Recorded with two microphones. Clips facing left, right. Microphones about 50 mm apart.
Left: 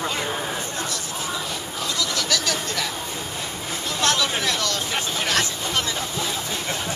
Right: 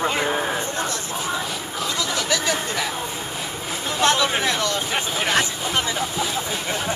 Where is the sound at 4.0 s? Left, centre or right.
Centre.